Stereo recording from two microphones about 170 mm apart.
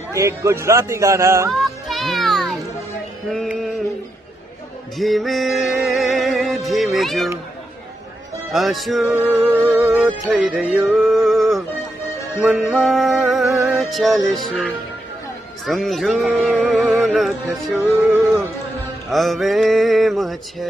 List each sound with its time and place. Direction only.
0.1 s a man's voice: 15° right (ahead or behind)
1.5 s music: centre (ahead or behind)
4.9 s music: centre (ahead or behind)
8.5 s speech: centre (ahead or behind)
9.1 s music: 15° right (ahead or behind)
10.3 s music: centre (ahead or behind)
15.6 s music: centre (ahead or behind)
19.0 s speech: centre (ahead or behind)